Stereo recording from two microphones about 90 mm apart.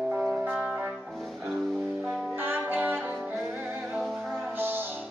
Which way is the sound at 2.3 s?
25° right (ahead or behind).